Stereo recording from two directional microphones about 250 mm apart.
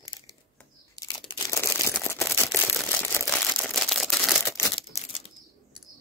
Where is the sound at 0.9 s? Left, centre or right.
Centre.